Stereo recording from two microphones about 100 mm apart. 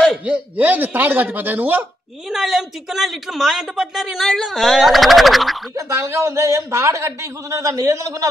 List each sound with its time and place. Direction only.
0.2 s speech: 15° right (ahead or behind)
2.2 s a man's voice: centre (ahead or behind)
5.8 s a man's voice: 25° right (ahead or behind)